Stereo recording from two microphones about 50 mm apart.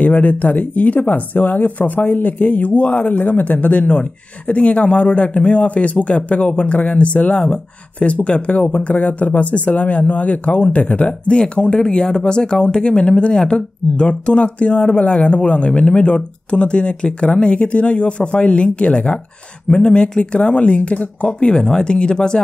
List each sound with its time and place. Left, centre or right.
0.0 s speech: left